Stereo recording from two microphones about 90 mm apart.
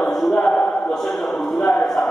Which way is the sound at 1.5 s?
Centre (ahead or behind).